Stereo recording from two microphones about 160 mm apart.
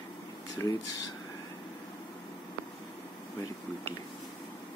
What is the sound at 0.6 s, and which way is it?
Speech, 15° left (ahead or behind).